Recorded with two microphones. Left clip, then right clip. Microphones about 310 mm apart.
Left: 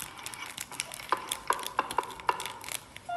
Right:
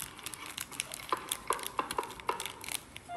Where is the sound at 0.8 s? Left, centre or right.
Centre.